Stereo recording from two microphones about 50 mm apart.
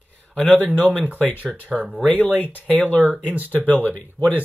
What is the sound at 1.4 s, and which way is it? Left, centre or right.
Speech, left.